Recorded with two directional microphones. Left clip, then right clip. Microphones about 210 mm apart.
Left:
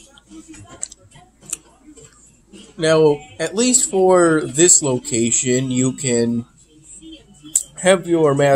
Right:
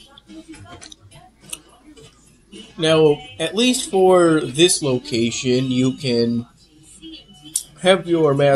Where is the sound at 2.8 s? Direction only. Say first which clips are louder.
Left 1 dB; 5° left (ahead or behind).